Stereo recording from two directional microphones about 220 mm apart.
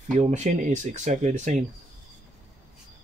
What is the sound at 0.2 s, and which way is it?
Speech, 30° right (ahead or behind).